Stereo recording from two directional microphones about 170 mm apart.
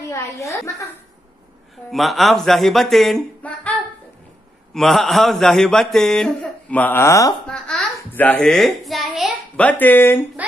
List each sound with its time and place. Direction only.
0.1 s a woman's voice: 20° left (ahead or behind)
1.9 s a man's voice: centre (ahead or behind)
4.7 s a man's voice: centre (ahead or behind); by 7.3 s 20° left (ahead or behind)
7.4 s a child's voice: 5° left (ahead or behind)
9.6 s a woman's voice: 10° left (ahead or behind)